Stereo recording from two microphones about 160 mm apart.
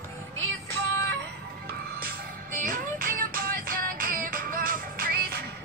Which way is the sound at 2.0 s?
65° right (ahead or behind).